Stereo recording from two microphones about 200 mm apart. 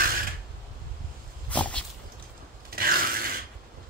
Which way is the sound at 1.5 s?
5° left (ahead or behind).